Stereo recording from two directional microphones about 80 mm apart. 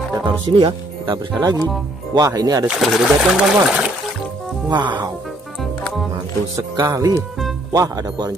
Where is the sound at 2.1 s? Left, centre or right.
Right.